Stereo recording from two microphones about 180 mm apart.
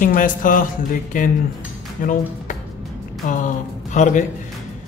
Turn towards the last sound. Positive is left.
turn(degrees=45)  # may be behind; listen again after turning